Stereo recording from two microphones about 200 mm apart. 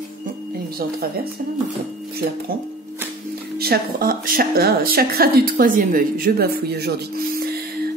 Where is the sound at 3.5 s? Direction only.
50° right (ahead or behind).